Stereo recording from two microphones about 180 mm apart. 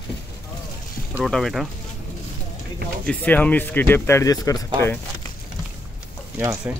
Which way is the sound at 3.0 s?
10° left (ahead or behind).